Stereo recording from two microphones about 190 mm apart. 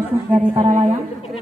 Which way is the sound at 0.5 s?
35° right (ahead or behind).